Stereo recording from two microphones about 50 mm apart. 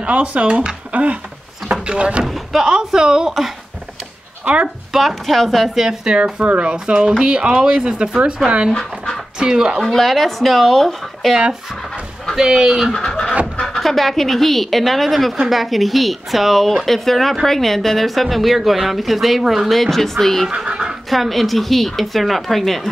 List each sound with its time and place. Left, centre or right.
0.0 s speech: right
2.2 s door: centre
2.6 s a woman's voice: centre
4.9 s a woman's voice: centre
6.1 s speech: right
8.7 s dog: centre
9.4 s a woman's voice: centre
9.8 s a woman's voice: centre
11.7 s chicken: centre
12.4 s a woman's voice: centre
12.9 s a sound: centre
13.7 s a woman's voice: centre
20.7 s goose: centre
21.1 s a woman's voice: centre